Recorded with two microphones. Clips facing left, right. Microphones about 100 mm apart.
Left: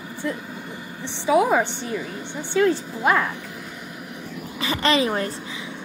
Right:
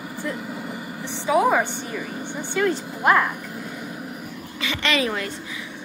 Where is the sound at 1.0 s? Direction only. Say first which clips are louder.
Left 2 dB; 20° left (ahead or behind).